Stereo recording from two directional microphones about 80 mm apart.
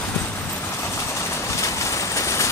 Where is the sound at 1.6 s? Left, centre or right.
Left.